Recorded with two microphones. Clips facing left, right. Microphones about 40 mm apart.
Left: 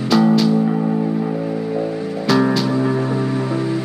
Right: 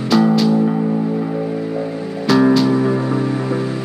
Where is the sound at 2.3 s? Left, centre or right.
Centre.